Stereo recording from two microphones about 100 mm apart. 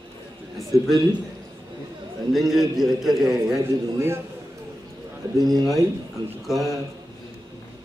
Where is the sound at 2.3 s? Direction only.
Centre (ahead or behind).